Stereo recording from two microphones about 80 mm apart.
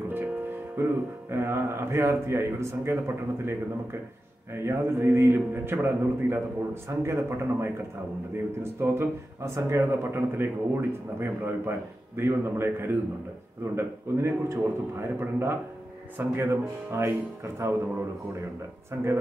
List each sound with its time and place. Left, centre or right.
0.8 s a man's voice: right
4.6 s a man's voice: right
8.7 s a man's voice: right